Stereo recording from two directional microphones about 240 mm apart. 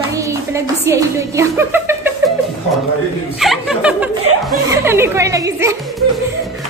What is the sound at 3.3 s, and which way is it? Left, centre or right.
Speech, centre.